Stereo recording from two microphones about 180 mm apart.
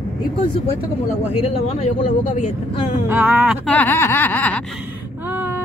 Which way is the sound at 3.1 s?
10° right (ahead or behind).